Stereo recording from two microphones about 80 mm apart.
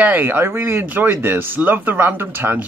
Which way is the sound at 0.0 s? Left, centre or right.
Right.